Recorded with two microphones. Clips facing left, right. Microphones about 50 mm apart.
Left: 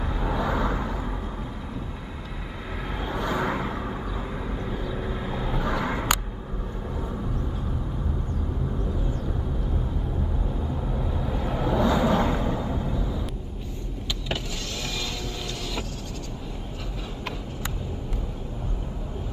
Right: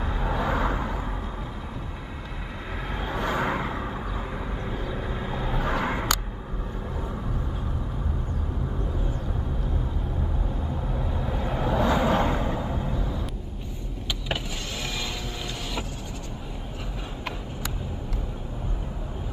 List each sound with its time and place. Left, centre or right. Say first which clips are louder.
0.0 s vehicle: even; centre
3.2 s vehicle: even; centre
5.7 s a sound: right 1 dB; centre
7.0 s vehicle: left 2 dB; centre
10.7 s vehicle: left 1 dB; centre